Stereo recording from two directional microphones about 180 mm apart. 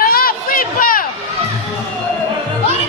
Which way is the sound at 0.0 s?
55° left (ahead or behind).